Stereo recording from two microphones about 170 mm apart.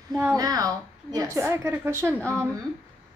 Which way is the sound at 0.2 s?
20° right (ahead or behind).